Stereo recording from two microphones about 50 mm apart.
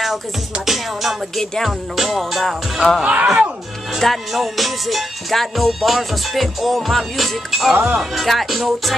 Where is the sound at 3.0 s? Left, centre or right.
Right.